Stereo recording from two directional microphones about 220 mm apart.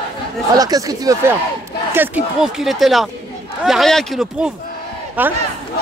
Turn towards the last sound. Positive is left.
turn(degrees=-10)  # may be behind; listen again after turning